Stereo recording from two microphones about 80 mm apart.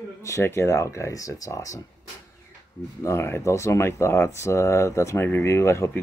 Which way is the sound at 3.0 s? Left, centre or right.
Left.